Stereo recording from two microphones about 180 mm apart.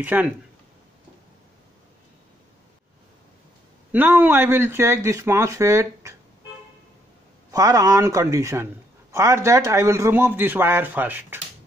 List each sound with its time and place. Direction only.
0.0 s speech: 10° right (ahead or behind)
3.9 s speech: 10° right (ahead or behind)
7.5 s speech: 20° right (ahead or behind)